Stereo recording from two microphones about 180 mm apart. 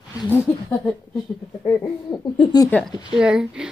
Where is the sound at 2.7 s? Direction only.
5° left (ahead or behind).